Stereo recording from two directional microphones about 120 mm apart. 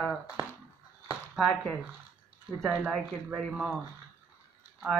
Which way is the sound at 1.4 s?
Centre (ahead or behind).